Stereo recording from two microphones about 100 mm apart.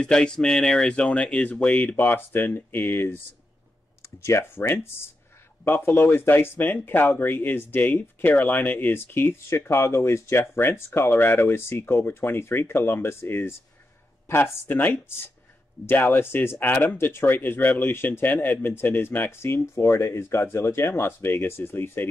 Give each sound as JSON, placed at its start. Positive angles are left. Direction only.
{"t": 0.0, "sound": "speech", "side_deg": 10}
{"t": 4.2, "sound": "speech", "side_deg": 25}